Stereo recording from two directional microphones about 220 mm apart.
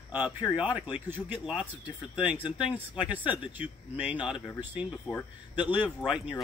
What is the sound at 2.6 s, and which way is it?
Speech, 5° right (ahead or behind).